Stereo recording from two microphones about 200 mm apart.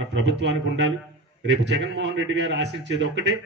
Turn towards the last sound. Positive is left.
turn(degrees=-60)  # may be behind; listen again after turning